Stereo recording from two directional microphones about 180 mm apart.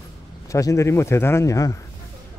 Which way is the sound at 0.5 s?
20° left (ahead or behind).